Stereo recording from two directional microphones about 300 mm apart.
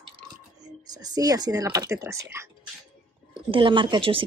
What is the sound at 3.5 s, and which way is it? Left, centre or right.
Speech, centre.